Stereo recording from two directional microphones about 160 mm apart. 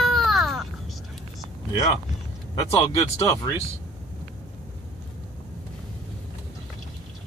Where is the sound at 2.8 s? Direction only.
20° left (ahead or behind).